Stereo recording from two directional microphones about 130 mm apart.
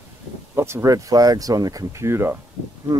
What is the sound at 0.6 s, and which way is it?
Speech, 20° right (ahead or behind).